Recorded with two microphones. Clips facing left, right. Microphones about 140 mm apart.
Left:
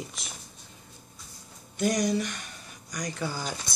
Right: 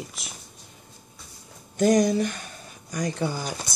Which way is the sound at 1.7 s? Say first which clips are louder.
Right 6 dB; 35° right (ahead or behind).